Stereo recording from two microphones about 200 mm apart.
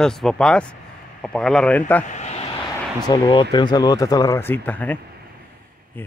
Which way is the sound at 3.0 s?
25° left (ahead or behind).